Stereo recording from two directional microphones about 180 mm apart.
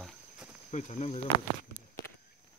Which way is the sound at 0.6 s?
40° left (ahead or behind).